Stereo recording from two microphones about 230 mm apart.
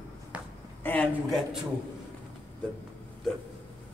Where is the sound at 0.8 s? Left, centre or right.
Centre.